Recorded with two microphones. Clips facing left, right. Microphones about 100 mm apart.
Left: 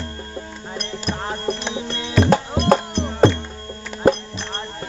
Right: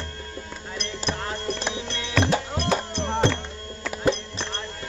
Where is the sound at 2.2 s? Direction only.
50° left (ahead or behind).